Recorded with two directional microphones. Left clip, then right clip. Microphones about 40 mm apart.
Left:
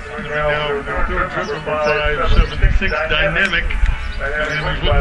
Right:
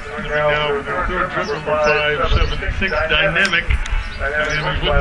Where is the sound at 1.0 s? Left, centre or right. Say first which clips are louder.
Even; right.